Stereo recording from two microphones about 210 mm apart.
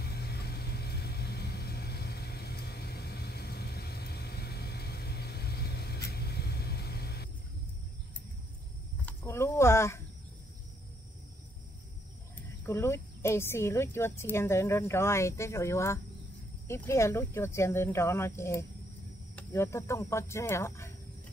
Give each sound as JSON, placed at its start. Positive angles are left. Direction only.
{"t": 0.0, "sound": "vehicle", "side_deg": 50}
{"t": 9.0, "sound": "a sound", "side_deg": 10}
{"t": 12.4, "sound": "speech", "side_deg": 10}